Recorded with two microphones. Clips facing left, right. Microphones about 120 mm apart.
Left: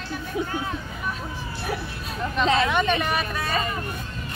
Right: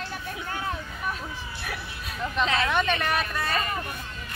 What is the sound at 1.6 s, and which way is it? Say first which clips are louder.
Speech: left 8 dB; 30° left (ahead or behind).